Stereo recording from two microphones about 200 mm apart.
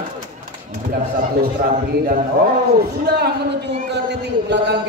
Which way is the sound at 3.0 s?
50° right (ahead or behind).